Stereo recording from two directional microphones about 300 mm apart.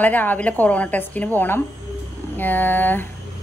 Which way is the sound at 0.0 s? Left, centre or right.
Centre.